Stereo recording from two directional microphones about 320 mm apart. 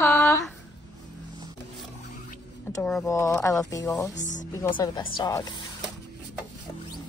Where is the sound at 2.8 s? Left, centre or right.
Centre.